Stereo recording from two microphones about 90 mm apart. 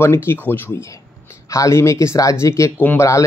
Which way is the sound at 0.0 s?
30° left (ahead or behind).